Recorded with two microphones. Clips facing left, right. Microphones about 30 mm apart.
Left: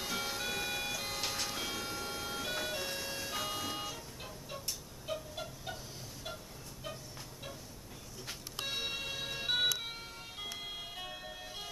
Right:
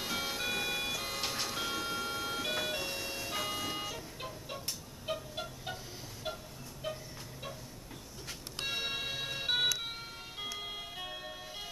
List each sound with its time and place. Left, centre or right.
0.0 s music: centre
4.2 s music: centre
8.6 s music: centre